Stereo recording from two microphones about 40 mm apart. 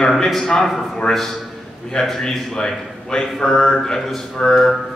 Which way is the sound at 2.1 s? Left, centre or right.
Centre.